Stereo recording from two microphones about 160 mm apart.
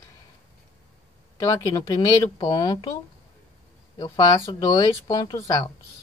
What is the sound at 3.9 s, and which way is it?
A woman's voice, 25° left (ahead or behind).